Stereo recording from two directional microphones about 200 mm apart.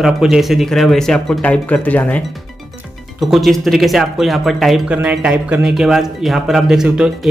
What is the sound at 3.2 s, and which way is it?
Speech, centre (ahead or behind).